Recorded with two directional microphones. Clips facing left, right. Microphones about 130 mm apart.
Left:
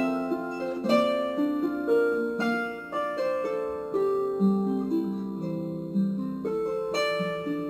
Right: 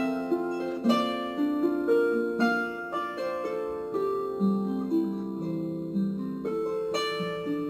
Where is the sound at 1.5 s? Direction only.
Centre (ahead or behind).